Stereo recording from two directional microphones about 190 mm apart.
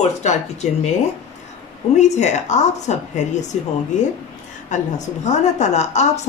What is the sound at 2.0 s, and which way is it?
A woman's voice, 40° left (ahead or behind).